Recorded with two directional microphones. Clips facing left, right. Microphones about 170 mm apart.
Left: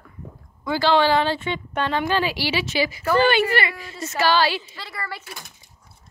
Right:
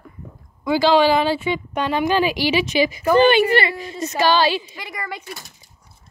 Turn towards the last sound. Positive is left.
turn(degrees=-15)  # may be behind; listen again after turning